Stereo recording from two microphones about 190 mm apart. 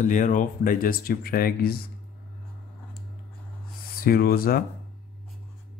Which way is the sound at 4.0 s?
50° left (ahead or behind).